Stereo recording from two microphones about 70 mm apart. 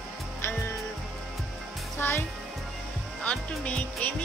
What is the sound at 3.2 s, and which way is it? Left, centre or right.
Speech, centre.